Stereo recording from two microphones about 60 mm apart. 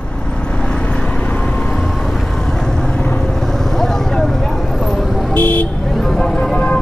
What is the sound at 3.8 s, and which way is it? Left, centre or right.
Vehicle, centre.